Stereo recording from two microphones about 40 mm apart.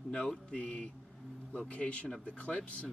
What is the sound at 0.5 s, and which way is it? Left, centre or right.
Speech, left.